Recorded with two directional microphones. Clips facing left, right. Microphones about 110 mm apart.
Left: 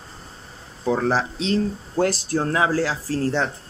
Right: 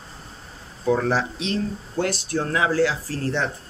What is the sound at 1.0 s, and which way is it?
Speech, 30° left (ahead or behind).